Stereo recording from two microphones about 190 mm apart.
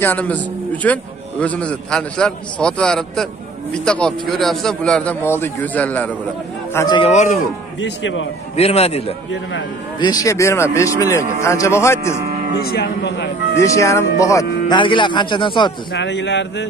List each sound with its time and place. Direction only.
0.0 s a man's voice: 10° left (ahead or behind)
7.0 s a man's voice: 35° left (ahead or behind)
7.8 s a man's voice: 75° left (ahead or behind)
8.5 s a man's voice: 30° left (ahead or behind)
9.3 s a man's voice: 75° left (ahead or behind)
9.9 s speech: 20° left (ahead or behind)
12.6 s speech: 55° left (ahead or behind)
13.6 s speech: 15° left (ahead or behind)
15.9 s a man's voice: 70° left (ahead or behind)